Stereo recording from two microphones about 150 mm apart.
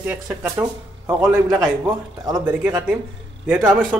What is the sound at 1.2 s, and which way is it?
Speech, 5° right (ahead or behind).